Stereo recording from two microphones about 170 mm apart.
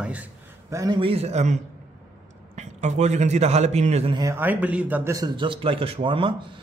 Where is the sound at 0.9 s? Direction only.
35° right (ahead or behind).